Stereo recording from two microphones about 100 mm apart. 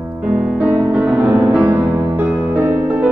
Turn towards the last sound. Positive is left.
turn(degrees=-20)  # may be behind; listen again after turning